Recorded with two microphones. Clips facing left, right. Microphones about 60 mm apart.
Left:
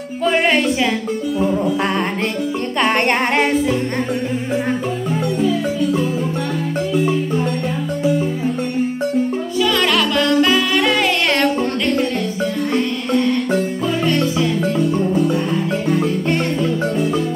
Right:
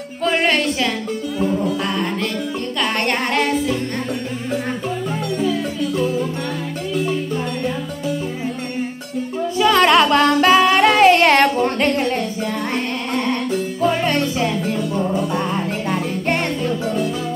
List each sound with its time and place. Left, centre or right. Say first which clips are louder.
0.2 s music: left 2 dB; centre
5.4 s music: left 2 dB; centre
10.1 s music: right 2 dB; right
13.8 s music: right 3 dB; right